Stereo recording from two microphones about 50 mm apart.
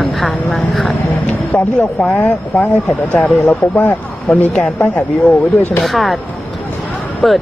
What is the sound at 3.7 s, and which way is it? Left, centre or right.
Speech, left.